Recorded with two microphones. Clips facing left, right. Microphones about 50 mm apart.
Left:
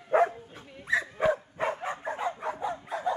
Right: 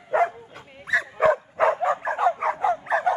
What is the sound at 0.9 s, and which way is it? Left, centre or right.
Dog, right.